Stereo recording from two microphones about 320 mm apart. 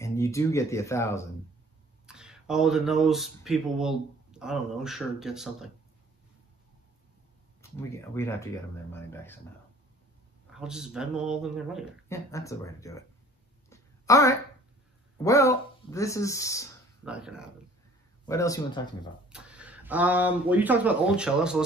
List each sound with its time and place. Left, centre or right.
0.0 s speech: centre
2.0 s speech: centre
7.9 s speech: centre
10.5 s speech: centre
12.3 s speech: centre
13.7 s a sound: centre
15.2 s speech: centre
17.0 s speech: centre
18.2 s speech: centre
19.2 s speech: centre